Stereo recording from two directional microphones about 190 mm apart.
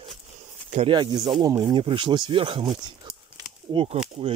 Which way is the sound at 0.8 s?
25° right (ahead or behind).